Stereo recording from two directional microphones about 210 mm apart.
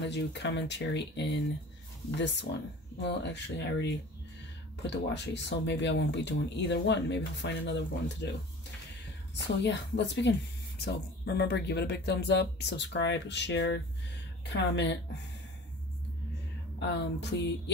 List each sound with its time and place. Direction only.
0.0 s speech: 55° left (ahead or behind)
3.0 s speech: 55° left (ahead or behind)
9.6 s speech: 55° left (ahead or behind)
16.8 s speech: 55° left (ahead or behind)